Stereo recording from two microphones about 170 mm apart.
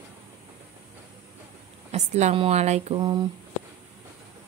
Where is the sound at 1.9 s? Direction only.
40° right (ahead or behind).